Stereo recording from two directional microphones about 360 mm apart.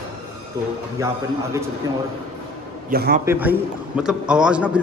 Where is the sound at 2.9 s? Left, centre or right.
Right.